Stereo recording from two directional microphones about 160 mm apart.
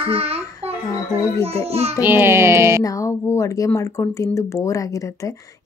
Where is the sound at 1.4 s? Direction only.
40° right (ahead or behind).